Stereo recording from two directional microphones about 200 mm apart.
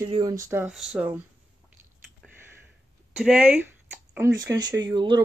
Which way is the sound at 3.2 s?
5° right (ahead or behind).